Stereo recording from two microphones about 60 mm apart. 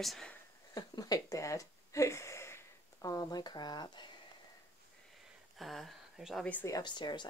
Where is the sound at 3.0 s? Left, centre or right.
Left.